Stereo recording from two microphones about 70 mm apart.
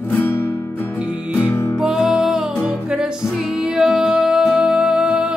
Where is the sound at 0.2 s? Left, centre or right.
Left.